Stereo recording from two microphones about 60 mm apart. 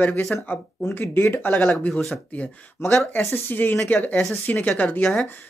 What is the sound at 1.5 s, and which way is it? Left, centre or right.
Speech, centre.